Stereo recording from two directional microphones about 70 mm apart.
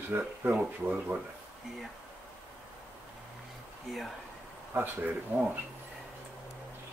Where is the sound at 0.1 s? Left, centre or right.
Right.